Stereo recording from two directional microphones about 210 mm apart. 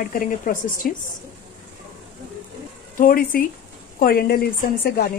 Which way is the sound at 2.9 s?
40° left (ahead or behind).